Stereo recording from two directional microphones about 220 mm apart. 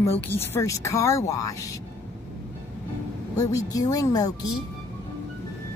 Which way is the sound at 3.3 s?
15° left (ahead or behind).